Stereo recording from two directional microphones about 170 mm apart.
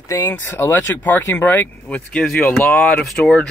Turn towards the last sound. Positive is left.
turn(degrees=5)  # may be behind; listen again after turning